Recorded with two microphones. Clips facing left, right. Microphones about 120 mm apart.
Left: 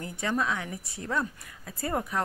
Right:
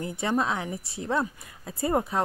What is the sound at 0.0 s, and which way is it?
Speech, 25° right (ahead or behind).